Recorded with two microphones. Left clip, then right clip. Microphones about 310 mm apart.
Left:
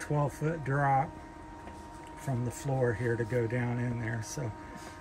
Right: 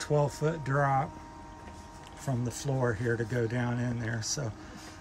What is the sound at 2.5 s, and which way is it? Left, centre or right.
Speech, centre.